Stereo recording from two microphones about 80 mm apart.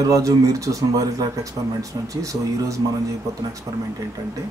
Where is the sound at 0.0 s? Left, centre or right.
Right.